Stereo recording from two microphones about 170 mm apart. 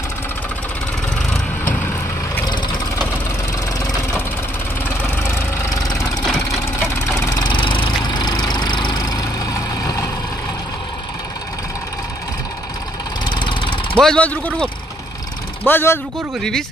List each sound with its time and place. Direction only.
2.4 s vehicle: 25° left (ahead or behind)
6.2 s vehicle: centre (ahead or behind)
7.1 s engine: 25° left (ahead or behind)
13.3 s lawn mower: 30° left (ahead or behind)
13.9 s speech: 5° left (ahead or behind)